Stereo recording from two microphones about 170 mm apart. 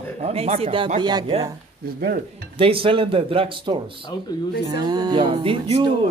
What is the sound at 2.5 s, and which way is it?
A man's voice, 30° right (ahead or behind).